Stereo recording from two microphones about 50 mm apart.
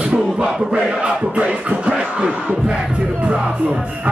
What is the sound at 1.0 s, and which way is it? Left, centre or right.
Crowd, right.